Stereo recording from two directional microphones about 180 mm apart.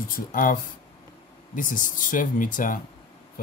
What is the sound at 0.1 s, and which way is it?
A man's voice, 50° left (ahead or behind).